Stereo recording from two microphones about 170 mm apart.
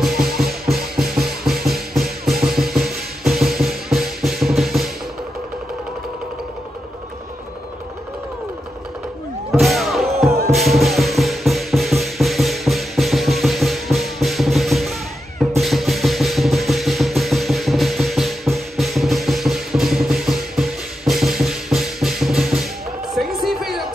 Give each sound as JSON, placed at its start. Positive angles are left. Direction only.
{"t": 0.1, "sound": "music", "side_deg": -60}
{"t": 0.7, "sound": "music", "side_deg": 0}
{"t": 9.5, "sound": "music", "side_deg": 0}
{"t": 23.1, "sound": "a sound", "side_deg": 0}